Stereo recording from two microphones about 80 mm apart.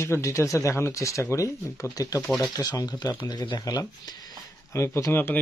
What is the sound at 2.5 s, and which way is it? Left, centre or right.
Speech, left.